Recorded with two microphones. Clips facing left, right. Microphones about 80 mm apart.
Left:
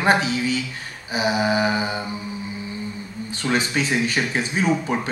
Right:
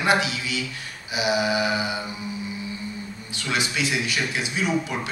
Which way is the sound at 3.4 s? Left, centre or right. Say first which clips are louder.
Left 4 dB; left.